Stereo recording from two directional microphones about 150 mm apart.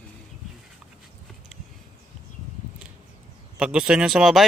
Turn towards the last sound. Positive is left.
turn(degrees=-5)  # may be behind; listen again after turning